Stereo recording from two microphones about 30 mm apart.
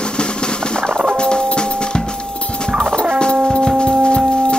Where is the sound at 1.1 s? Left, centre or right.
Left.